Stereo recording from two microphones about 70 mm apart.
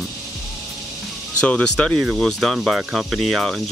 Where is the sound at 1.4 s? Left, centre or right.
Centre.